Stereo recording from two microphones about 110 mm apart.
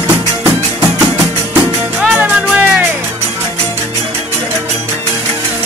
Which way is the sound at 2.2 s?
15° right (ahead or behind).